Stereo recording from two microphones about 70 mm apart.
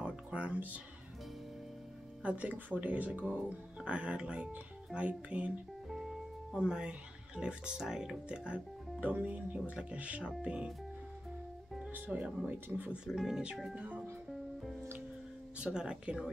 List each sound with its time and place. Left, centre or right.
0.0 s music: centre
2.2 s speech: right
6.5 s speech: centre
11.9 s speech: right
13.0 s speech: centre
13.7 s music: right
15.5 s speech: centre